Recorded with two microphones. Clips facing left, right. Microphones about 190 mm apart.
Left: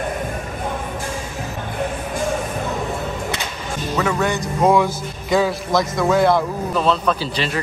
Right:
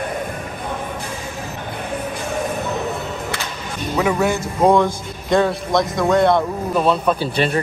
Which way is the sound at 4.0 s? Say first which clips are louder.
Right 3 dB; 5° right (ahead or behind).